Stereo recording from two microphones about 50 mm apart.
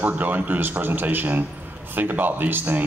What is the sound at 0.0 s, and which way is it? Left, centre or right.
A man's voice, right.